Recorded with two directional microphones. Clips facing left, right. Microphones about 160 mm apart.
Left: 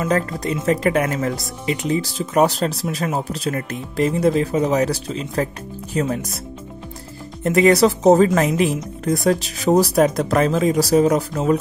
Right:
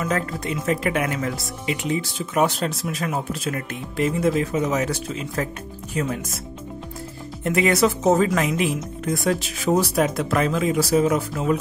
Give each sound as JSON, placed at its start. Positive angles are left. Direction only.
{"t": 0.0, "sound": "speech", "side_deg": 35}
{"t": 7.4, "sound": "speech", "side_deg": 35}